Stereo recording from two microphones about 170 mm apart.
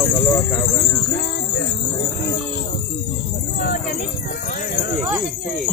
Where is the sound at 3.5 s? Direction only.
60° left (ahead or behind).